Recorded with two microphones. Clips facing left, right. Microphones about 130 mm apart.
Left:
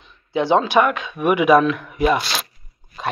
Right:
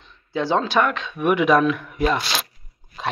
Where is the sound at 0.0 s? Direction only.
15° left (ahead or behind).